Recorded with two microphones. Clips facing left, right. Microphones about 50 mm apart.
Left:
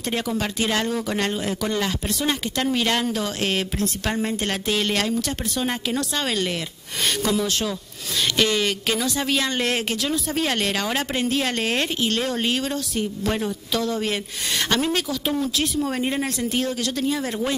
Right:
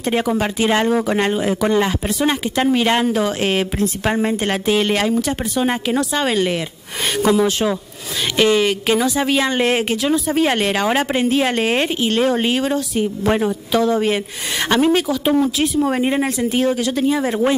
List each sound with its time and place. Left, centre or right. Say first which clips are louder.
0.0 s speech: right 7 dB; right